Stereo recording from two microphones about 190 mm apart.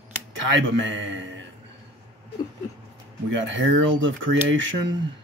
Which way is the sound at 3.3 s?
75° right (ahead or behind).